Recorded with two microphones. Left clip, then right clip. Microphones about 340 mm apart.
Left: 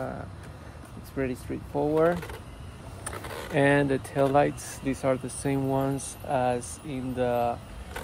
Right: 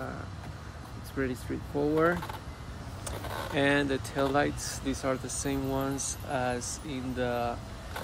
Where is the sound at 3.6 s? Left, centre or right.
Centre.